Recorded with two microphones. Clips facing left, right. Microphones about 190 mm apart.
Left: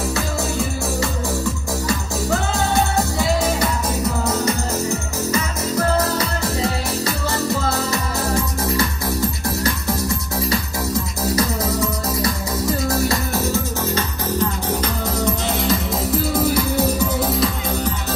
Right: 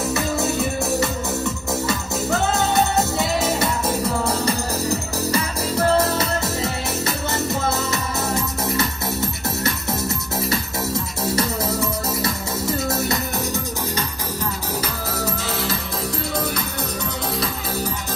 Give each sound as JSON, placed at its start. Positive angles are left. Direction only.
{"t": 2.7, "sound": "music", "side_deg": -20}
{"t": 4.3, "sound": "music", "side_deg": -35}
{"t": 9.6, "sound": "music", "side_deg": -25}
{"t": 15.6, "sound": "music", "side_deg": 0}